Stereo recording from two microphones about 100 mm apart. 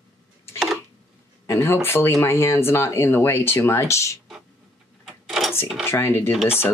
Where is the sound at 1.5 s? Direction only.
25° left (ahead or behind).